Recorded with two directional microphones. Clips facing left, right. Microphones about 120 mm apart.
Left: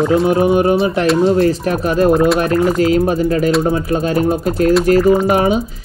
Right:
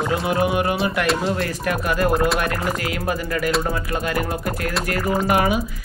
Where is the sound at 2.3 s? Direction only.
30° left (ahead or behind).